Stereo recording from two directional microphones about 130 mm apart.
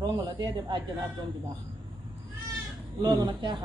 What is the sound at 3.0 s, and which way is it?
Speech, 35° right (ahead or behind).